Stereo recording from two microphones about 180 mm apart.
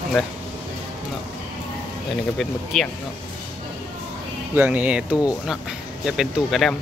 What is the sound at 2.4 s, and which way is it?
Speech, centre (ahead or behind).